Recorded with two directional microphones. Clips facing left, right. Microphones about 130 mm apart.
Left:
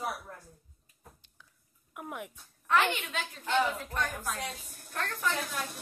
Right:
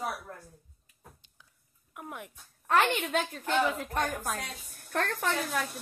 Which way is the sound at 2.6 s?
45° right (ahead or behind).